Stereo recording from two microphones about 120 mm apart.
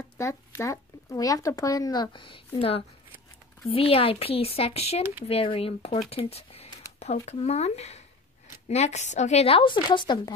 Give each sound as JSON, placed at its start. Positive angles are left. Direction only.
{"t": 0.2, "sound": "a woman's voice", "side_deg": 25}